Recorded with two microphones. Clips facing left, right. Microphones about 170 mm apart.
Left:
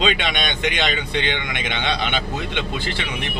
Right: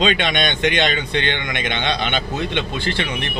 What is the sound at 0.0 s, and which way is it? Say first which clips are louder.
A man's voice: right 3 dB; 5° left (ahead or behind).